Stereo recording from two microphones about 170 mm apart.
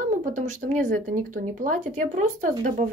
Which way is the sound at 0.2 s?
50° right (ahead or behind).